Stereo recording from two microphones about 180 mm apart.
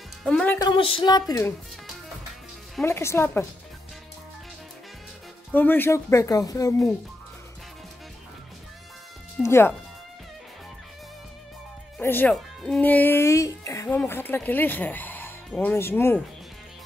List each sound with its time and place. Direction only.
0.2 s speech: 5° left (ahead or behind)
0.6 s speech: 25° left (ahead or behind)
2.8 s speech: 15° left (ahead or behind)
5.5 s speech: 10° left (ahead or behind)
9.4 s speech: 15° left (ahead or behind)
12.0 s speech: 10° left (ahead or behind)